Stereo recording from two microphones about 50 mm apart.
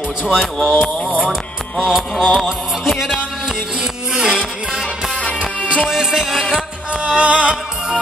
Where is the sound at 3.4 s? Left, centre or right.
Centre.